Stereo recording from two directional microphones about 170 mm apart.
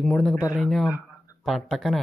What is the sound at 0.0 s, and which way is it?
Speech, 5° left (ahead or behind).